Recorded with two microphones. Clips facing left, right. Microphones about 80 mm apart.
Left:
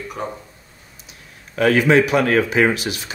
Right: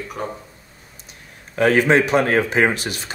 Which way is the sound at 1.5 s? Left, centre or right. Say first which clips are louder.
Left 1 dB; right.